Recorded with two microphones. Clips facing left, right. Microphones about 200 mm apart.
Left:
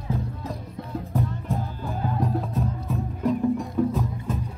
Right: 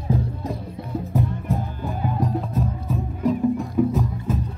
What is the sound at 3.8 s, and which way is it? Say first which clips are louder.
Music: right 4 dB; 10° right (ahead or behind).